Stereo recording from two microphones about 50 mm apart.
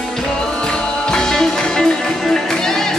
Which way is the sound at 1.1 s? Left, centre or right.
Centre.